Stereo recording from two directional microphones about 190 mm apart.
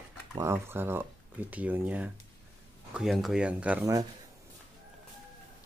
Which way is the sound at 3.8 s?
20° right (ahead or behind).